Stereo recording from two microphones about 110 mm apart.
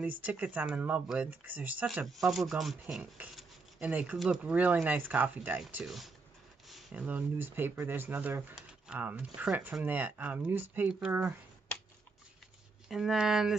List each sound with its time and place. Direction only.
0.0 s speech: 15° right (ahead or behind)
2.0 s speech: centre (ahead or behind)
5.9 s speech: centre (ahead or behind)
6.7 s a sound: centre (ahead or behind)
7.0 s speech: 15° right (ahead or behind)
12.8 s speech: centre (ahead or behind)